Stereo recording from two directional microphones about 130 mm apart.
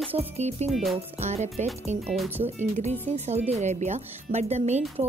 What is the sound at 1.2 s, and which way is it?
Speech, 60° right (ahead or behind).